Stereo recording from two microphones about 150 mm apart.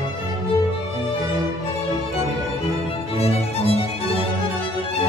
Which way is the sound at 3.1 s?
40° left (ahead or behind).